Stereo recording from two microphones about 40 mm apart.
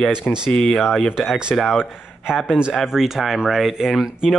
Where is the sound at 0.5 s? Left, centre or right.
Centre.